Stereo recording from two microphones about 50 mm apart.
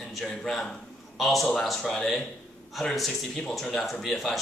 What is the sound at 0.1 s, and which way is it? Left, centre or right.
A man's voice, centre.